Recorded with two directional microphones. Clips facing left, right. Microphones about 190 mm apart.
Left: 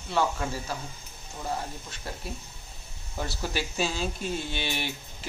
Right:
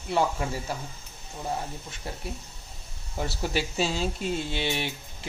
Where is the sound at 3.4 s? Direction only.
25° right (ahead or behind).